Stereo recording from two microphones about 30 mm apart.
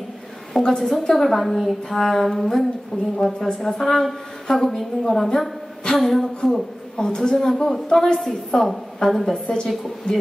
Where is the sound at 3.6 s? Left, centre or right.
Centre.